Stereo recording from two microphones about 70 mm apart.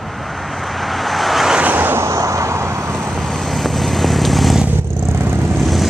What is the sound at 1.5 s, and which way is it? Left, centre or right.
Vehicle, right.